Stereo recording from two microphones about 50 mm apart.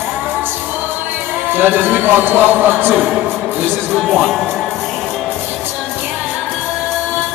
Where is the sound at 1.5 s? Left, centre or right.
Right.